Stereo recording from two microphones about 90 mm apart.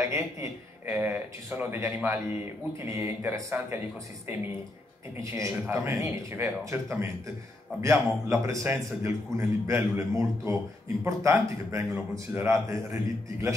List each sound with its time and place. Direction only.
0.1 s a man's voice: 30° right (ahead or behind)